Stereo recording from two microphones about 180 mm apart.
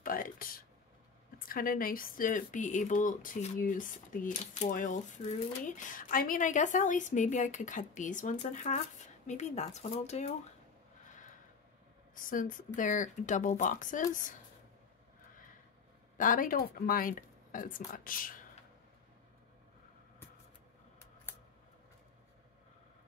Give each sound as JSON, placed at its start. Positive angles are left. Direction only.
{"t": 0.0, "sound": "a sound", "side_deg": 50}
{"t": 1.5, "sound": "speech", "side_deg": 50}
{"t": 12.3, "sound": "speech", "side_deg": 50}
{"t": 16.2, "sound": "speech", "side_deg": 50}